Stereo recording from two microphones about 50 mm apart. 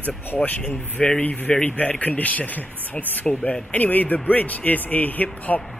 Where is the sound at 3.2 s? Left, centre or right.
Left.